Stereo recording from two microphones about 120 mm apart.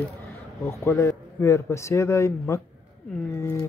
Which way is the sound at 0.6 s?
20° left (ahead or behind).